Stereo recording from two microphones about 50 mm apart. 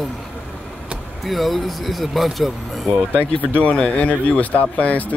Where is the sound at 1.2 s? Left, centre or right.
Centre.